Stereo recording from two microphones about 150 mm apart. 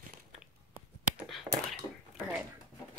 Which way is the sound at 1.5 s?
20° right (ahead or behind).